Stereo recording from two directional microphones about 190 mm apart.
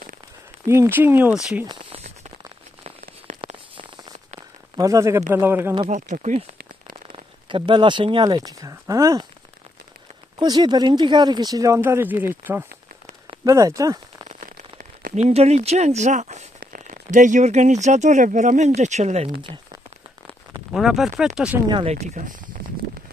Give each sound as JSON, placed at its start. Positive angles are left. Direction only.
{"t": 0.7, "sound": "speech", "side_deg": -15}
{"t": 2.8, "sound": "a sound", "side_deg": -35}
{"t": 4.7, "sound": "speech", "side_deg": -15}
{"t": 5.9, "sound": "speech", "side_deg": -40}
{"t": 7.4, "sound": "speech", "side_deg": -25}
{"t": 10.4, "sound": "speech", "side_deg": -20}
{"t": 14.3, "sound": "speech", "side_deg": -45}
{"t": 20.7, "sound": "speech", "side_deg": 0}
{"t": 21.6, "sound": "speech", "side_deg": -25}
{"t": 22.0, "sound": "speech", "side_deg": -40}